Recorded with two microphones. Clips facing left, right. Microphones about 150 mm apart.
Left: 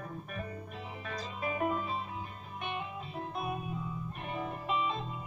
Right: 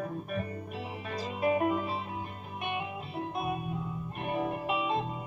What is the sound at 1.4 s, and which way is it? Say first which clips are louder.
Music: right 7 dB; 60° right (ahead or behind).